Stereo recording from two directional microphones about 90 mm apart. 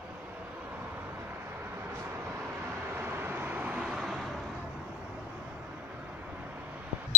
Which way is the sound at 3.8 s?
5° right (ahead or behind).